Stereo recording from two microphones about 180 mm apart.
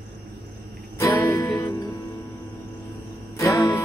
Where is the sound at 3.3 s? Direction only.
20° left (ahead or behind).